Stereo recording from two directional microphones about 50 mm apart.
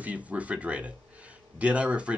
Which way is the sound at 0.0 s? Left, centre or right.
Right.